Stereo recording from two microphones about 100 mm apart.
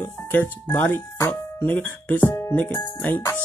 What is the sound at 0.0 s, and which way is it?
Speech, 25° left (ahead or behind).